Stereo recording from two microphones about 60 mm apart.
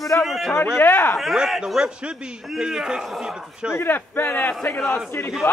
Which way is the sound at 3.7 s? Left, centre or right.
Left.